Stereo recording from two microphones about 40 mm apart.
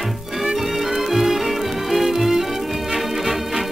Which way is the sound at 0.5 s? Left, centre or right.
Centre.